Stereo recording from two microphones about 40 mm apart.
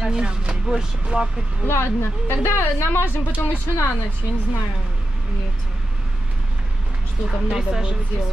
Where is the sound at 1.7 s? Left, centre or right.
Left.